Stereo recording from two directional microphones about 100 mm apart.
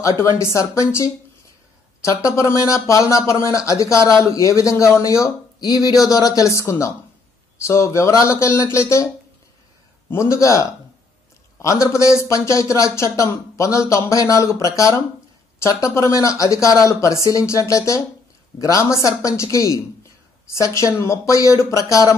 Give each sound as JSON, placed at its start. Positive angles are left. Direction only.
{"t": 0.0, "sound": "speech", "side_deg": 30}